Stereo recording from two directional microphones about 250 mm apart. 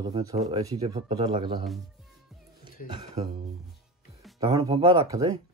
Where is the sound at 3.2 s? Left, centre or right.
Right.